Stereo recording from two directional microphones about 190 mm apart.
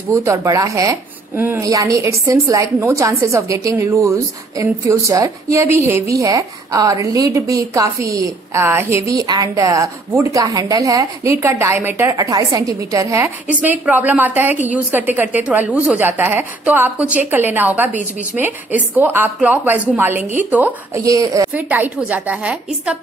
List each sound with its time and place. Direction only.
0.1 s a woman's voice: 15° right (ahead or behind)